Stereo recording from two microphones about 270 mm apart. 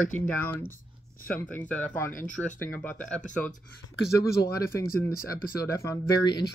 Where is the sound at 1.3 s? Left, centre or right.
Centre.